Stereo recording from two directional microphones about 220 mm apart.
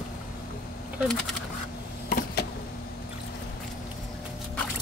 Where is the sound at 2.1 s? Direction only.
40° left (ahead or behind).